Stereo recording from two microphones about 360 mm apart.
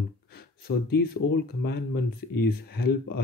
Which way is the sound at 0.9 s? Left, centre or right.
Left.